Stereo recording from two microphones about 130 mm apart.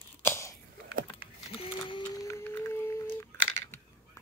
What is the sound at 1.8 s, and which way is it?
Music, 40° left (ahead or behind).